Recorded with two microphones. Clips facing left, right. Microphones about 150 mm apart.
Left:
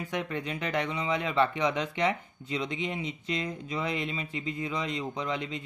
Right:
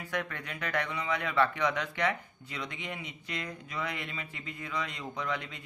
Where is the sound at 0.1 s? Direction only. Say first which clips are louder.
Left 2 dB; 20° left (ahead or behind).